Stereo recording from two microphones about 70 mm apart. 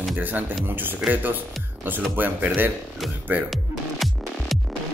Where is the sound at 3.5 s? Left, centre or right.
Centre.